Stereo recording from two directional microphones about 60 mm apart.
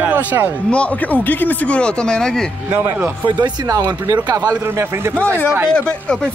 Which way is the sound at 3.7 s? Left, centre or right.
Right.